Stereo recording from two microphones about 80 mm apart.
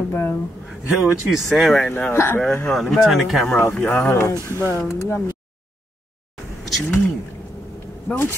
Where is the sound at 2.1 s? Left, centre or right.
Left.